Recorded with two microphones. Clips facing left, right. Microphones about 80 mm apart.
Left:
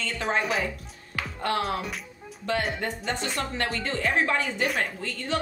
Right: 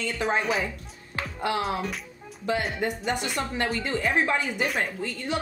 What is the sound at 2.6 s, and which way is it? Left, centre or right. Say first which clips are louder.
A woman's voice: right 1 dB; centre.